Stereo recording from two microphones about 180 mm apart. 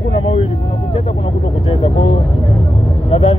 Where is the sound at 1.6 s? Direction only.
30° left (ahead or behind).